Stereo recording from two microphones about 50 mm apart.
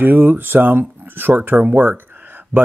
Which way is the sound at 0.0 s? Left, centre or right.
Right.